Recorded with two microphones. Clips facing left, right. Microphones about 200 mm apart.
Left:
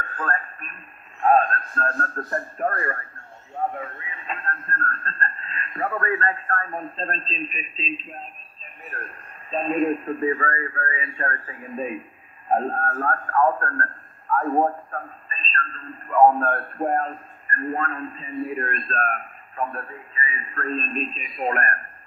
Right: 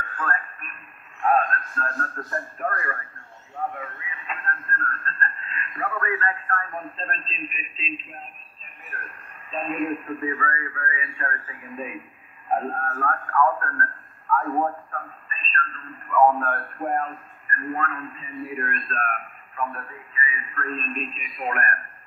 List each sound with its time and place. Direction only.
0.2 s a man's voice: 30° left (ahead or behind)
3.7 s a sound: 30° left (ahead or behind)
5.0 s a man's voice: 30° left (ahead or behind)
9.5 s a man's voice: 30° left (ahead or behind)